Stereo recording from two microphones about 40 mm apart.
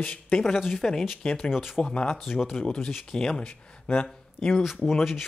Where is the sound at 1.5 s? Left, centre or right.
Centre.